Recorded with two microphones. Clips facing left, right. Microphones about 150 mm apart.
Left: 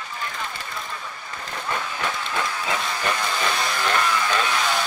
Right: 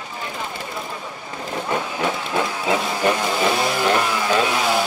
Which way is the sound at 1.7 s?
15° right (ahead or behind).